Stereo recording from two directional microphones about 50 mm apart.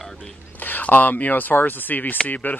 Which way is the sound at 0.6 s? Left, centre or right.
Left.